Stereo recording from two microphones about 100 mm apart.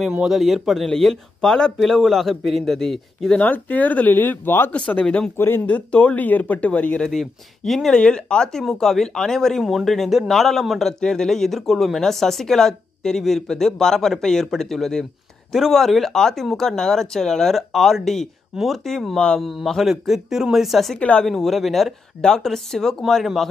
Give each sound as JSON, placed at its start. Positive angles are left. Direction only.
{"t": 0.0, "sound": "speech", "side_deg": -5}
{"t": 3.3, "sound": "speech", "side_deg": 15}
{"t": 7.1, "sound": "speech", "side_deg": 0}
{"t": 21.0, "sound": "speech", "side_deg": 10}
{"t": 21.3, "sound": "speech", "side_deg": 0}